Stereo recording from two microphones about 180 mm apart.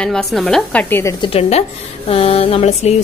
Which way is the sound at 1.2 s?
35° left (ahead or behind).